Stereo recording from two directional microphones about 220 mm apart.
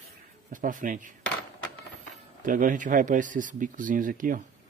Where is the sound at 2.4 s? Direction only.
35° right (ahead or behind).